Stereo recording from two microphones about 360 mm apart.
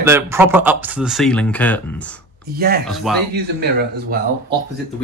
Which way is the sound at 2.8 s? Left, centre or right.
Centre.